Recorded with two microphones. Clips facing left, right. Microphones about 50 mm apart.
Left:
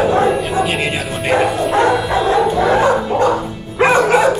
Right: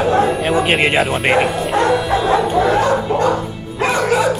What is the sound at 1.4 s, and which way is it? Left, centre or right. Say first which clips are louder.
Bow-wow: left 2 dB; centre.